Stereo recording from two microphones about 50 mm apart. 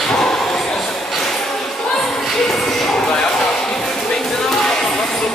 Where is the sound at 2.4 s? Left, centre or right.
Centre.